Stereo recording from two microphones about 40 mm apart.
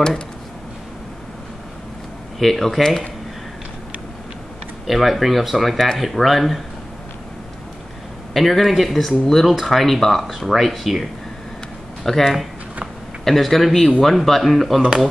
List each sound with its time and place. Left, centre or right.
2.3 s speech: centre
4.8 s speech: centre
8.3 s speech: centre